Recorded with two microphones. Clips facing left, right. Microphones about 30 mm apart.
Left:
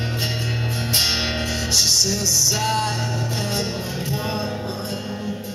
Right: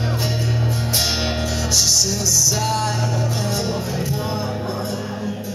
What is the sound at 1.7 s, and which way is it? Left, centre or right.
Music, left.